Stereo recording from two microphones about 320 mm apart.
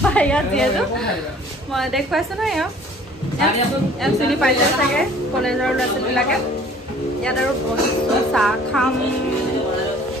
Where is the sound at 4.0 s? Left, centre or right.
Centre.